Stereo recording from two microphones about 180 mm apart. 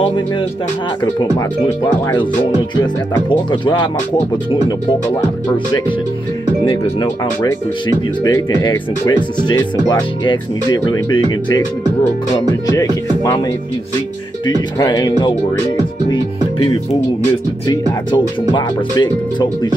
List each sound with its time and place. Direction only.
2.7 s speech: 25° left (ahead or behind)
8.2 s speech: 20° left (ahead or behind)
14.4 s speech: 25° left (ahead or behind)
17.6 s speech: 25° left (ahead or behind)